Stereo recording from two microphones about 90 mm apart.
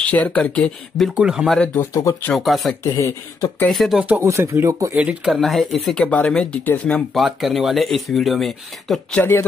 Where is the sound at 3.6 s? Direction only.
Centre (ahead or behind).